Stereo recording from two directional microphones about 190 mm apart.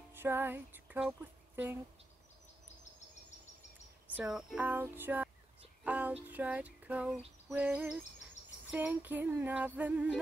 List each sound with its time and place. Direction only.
0.1 s female singing: 10° right (ahead or behind)
4.1 s female singing: 5° right (ahead or behind)